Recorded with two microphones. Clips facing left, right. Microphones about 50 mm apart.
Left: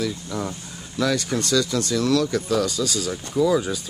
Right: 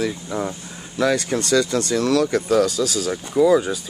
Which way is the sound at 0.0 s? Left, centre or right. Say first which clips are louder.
Right 3 dB; right.